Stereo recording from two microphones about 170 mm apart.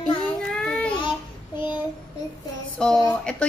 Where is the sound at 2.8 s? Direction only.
5° left (ahead or behind).